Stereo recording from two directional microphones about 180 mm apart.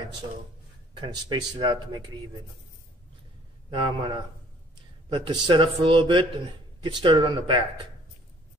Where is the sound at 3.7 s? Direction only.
25° right (ahead or behind).